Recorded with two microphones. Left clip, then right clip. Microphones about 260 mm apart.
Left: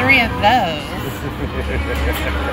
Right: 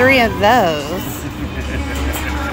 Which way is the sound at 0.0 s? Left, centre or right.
Centre.